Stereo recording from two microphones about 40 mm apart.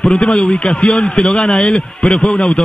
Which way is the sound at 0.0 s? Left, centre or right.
Centre.